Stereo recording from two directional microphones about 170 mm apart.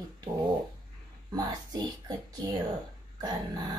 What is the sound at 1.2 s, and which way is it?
Speech, 25° right (ahead or behind).